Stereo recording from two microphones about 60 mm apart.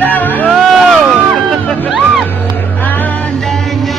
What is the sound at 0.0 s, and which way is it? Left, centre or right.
Music, left.